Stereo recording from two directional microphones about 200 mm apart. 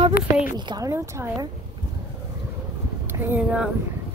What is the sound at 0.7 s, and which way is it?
Speech, 15° right (ahead or behind).